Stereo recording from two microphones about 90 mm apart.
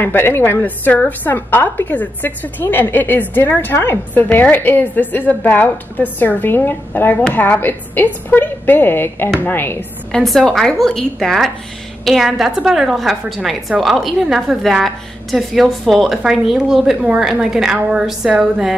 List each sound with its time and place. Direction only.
0.0 s a woman's voice: 25° left (ahead or behind)
10.1 s a woman's voice: 5° left (ahead or behind)